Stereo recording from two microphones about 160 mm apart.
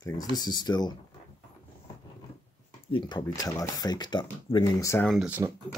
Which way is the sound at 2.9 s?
25° left (ahead or behind).